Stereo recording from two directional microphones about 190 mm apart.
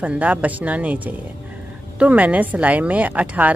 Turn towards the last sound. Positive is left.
turn(degrees=-10)  # may be behind; listen again after turning